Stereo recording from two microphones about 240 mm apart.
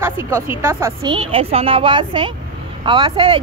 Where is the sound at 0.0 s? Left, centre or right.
Centre.